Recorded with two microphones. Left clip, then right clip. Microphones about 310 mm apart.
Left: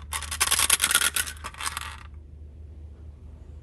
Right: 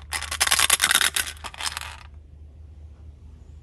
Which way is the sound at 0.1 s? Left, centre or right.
Centre.